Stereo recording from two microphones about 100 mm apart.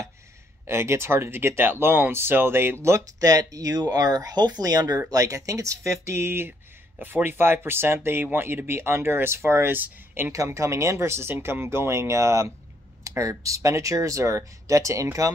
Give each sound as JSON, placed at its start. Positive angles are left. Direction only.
{"t": 0.7, "sound": "speech", "side_deg": -25}
{"t": 10.3, "sound": "speech", "side_deg": -30}